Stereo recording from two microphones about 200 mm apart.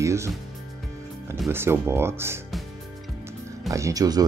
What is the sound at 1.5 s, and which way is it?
Speech, 10° right (ahead or behind).